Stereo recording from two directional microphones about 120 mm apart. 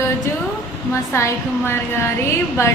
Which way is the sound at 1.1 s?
25° left (ahead or behind).